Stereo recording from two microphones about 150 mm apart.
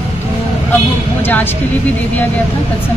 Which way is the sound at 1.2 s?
15° left (ahead or behind).